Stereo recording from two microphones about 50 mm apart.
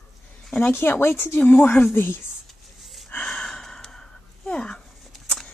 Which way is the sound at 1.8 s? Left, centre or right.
Left.